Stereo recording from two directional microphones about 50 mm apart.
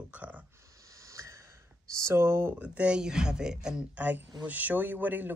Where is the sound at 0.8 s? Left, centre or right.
Right.